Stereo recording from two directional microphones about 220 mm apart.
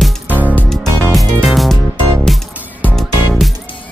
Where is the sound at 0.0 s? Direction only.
5° right (ahead or behind).